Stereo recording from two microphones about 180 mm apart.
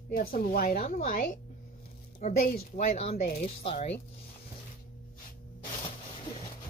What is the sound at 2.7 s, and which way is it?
Speech, 35° left (ahead or behind).